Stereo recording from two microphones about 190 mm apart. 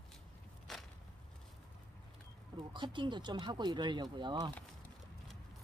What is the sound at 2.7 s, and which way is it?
Speech, 25° right (ahead or behind).